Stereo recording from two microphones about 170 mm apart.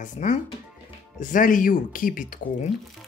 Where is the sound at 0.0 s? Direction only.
45° left (ahead or behind).